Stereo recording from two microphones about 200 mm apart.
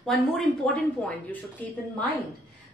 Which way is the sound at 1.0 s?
5° left (ahead or behind).